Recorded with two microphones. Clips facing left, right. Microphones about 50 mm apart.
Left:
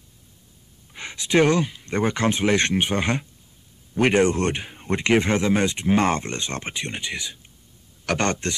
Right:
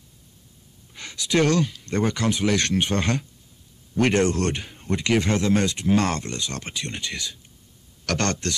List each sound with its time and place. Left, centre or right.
0.9 s a man's voice: left